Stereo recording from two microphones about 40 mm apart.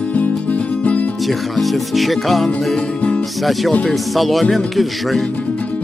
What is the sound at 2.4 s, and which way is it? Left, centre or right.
Music, centre.